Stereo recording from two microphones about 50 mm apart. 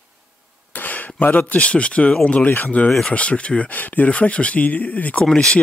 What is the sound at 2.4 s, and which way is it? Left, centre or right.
Speech, left.